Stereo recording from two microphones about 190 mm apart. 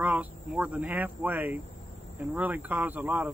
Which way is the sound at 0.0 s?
5° right (ahead or behind).